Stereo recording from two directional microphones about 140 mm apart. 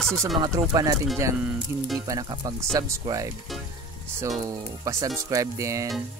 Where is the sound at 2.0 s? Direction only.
25° right (ahead or behind).